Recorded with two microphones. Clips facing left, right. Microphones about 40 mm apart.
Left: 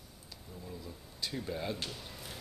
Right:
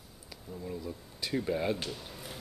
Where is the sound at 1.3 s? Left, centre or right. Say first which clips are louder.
Right 8 dB; centre.